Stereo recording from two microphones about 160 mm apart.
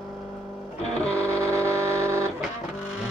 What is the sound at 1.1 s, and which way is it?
Music, 15° right (ahead or behind).